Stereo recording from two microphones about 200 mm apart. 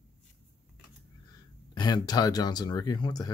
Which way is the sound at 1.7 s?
20° left (ahead or behind).